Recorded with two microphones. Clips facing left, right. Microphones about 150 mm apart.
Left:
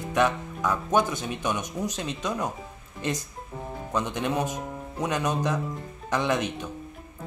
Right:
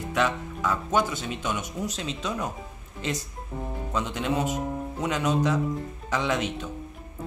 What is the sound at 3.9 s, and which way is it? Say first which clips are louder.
Speech: even; 10° left (ahead or behind).